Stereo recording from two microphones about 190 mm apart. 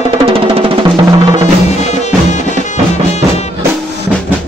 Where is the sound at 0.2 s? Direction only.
30° right (ahead or behind).